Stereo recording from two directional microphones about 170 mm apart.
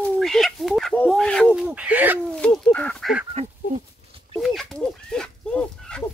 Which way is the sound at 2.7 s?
5° left (ahead or behind).